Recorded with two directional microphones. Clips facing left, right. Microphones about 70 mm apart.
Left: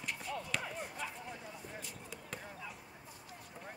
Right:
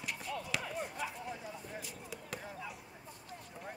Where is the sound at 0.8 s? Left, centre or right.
Centre.